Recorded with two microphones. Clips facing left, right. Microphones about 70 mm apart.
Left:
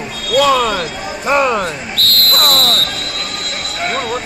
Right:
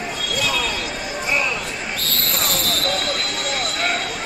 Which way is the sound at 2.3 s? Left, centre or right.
Left.